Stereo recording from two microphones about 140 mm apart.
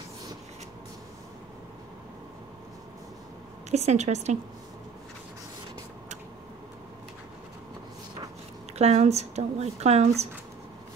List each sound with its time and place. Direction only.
3.7 s speech: 55° right (ahead or behind)
8.7 s speech: 50° right (ahead or behind)